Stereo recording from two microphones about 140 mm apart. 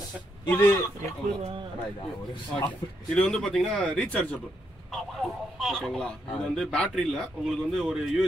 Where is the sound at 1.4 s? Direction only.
50° right (ahead or behind).